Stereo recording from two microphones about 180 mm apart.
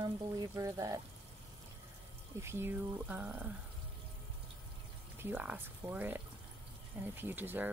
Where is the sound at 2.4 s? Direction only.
15° right (ahead or behind).